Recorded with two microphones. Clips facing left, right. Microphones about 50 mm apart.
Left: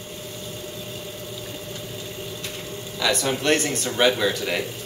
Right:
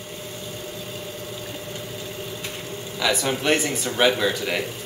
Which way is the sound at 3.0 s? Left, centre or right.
Centre.